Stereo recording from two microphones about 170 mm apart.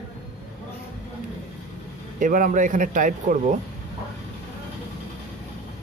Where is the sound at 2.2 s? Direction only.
50° right (ahead or behind).